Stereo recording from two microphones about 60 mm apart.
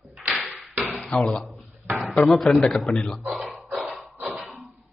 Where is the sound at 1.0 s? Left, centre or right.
Centre.